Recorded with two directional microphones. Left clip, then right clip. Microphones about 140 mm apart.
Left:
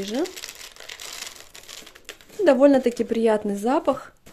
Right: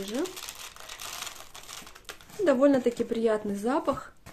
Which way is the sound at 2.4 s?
40° left (ahead or behind).